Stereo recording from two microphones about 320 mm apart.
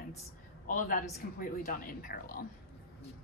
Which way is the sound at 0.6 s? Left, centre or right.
Left.